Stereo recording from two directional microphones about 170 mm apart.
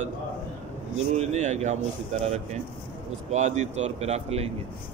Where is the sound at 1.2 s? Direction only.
40° right (ahead or behind).